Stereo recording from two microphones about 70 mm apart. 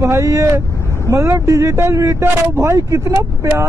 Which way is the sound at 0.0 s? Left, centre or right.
Right.